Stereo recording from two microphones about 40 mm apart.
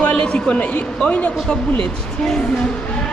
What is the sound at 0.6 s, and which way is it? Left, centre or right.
A woman's voice, left.